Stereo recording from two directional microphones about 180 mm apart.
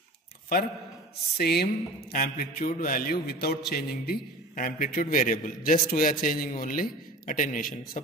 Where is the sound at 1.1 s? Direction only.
60° left (ahead or behind).